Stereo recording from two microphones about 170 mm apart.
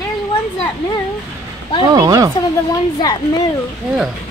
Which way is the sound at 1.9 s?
20° right (ahead or behind).